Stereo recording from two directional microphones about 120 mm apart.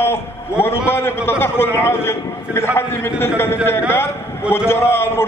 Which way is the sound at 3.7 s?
20° left (ahead or behind).